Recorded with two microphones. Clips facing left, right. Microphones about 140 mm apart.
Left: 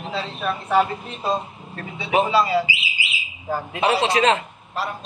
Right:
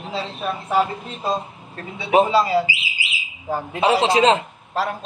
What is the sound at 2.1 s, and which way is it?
A man's voice, 30° right (ahead or behind).